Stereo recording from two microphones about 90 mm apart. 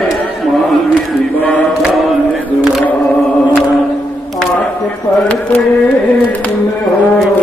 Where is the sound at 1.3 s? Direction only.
20° left (ahead or behind).